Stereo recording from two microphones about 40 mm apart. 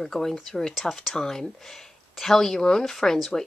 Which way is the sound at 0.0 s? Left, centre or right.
Centre.